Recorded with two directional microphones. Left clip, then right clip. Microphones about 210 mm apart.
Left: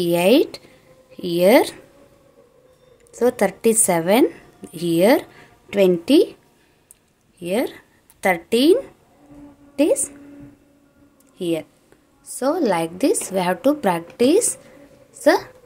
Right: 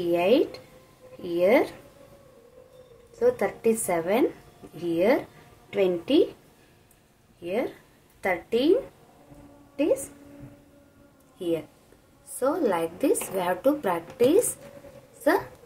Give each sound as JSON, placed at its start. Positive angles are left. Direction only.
{"t": 0.0, "sound": "a woman's voice", "side_deg": 50}
{"t": 3.2, "sound": "a woman's voice", "side_deg": 50}
{"t": 7.4, "sound": "a woman's voice", "side_deg": 55}
{"t": 11.3, "sound": "a woman's voice", "side_deg": 45}